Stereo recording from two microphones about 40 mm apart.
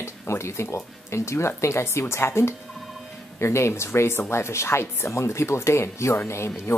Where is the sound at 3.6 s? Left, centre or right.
Left.